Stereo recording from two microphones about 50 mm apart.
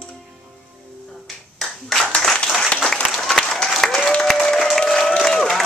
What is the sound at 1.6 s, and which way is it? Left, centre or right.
Clapping, centre.